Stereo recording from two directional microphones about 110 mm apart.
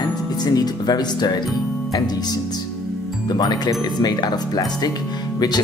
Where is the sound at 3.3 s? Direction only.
40° left (ahead or behind).